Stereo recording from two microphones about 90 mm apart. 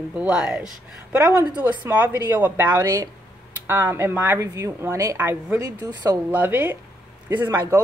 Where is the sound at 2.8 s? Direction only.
35° right (ahead or behind).